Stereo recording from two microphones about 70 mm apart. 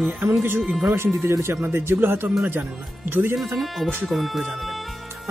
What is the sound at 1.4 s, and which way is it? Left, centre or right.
Speech, right.